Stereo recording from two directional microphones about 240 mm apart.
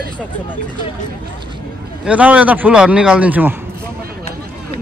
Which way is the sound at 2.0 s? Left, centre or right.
Centre.